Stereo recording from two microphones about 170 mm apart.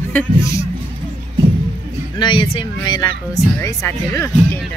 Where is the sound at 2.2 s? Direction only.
30° left (ahead or behind).